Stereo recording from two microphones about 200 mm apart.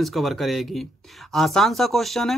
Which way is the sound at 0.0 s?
Centre (ahead or behind).